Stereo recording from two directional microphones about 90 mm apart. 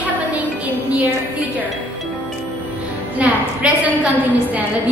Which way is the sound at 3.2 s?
15° right (ahead or behind).